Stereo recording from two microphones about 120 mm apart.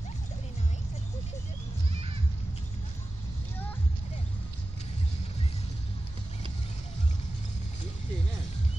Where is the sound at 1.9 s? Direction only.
50° right (ahead or behind).